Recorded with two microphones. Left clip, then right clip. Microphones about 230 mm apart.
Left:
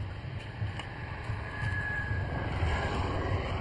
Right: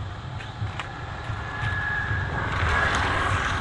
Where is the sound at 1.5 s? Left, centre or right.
Left.